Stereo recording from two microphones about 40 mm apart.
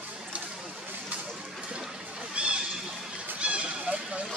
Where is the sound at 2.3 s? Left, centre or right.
Right.